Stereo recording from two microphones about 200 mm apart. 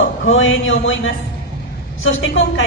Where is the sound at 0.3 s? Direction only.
75° left (ahead or behind).